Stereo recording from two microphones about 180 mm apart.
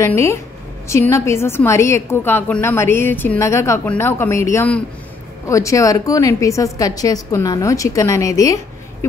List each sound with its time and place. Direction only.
0.0 s a woman's voice: 15° left (ahead or behind)